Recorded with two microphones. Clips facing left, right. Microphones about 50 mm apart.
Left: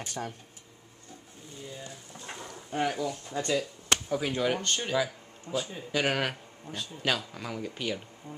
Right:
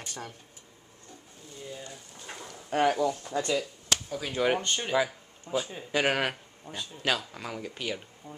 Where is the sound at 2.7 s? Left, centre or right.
Right.